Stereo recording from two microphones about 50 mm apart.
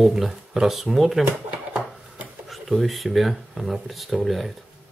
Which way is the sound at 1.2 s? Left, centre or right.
Right.